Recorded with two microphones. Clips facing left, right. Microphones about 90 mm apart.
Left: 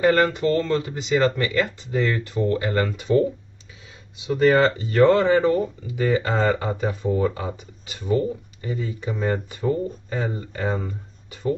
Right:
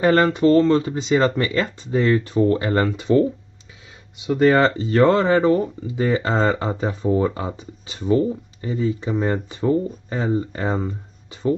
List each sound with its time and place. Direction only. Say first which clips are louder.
0.0 s speech: right 3 dB; 30° right (ahead or behind)
4.3 s speech: right 2 dB; 35° right (ahead or behind)